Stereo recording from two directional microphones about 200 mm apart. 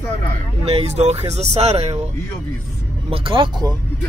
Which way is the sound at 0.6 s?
30° right (ahead or behind).